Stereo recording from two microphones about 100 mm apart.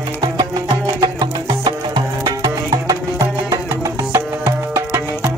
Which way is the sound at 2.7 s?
35° right (ahead or behind).